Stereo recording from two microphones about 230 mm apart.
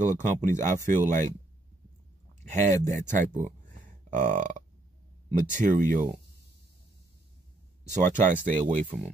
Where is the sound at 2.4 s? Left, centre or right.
Right.